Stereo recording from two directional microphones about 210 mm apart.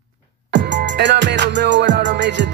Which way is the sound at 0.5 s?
55° right (ahead or behind).